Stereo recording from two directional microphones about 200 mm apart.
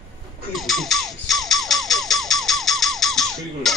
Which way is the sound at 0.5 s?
Centre (ahead or behind).